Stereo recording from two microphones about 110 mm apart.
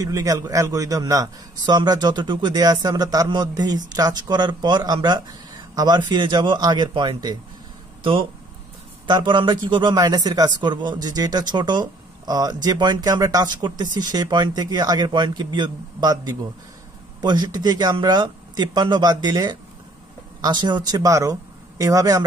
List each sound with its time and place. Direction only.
0.0 s a man's voice: 35° right (ahead or behind)
8.0 s a man's voice: 55° right (ahead or behind); by 22.2 s 30° right (ahead or behind)